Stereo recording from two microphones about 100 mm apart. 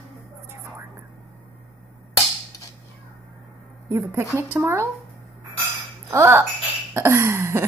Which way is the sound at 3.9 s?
25° right (ahead or behind).